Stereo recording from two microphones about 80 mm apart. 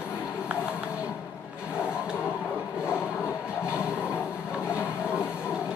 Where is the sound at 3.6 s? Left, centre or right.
Centre.